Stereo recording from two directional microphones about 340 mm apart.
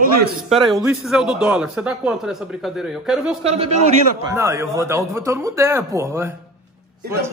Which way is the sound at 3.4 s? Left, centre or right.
Centre.